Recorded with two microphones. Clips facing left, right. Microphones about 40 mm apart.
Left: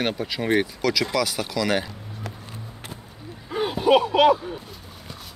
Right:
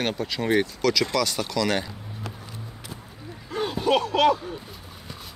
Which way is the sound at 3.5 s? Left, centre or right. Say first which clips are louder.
Left 4 dB; centre.